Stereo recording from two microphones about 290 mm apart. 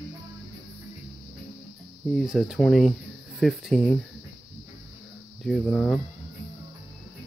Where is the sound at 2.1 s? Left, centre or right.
Centre.